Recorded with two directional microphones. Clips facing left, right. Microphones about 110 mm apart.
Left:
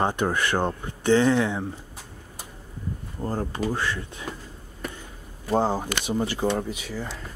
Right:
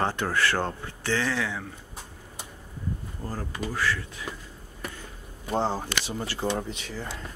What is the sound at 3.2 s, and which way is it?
Speech, 30° left (ahead or behind).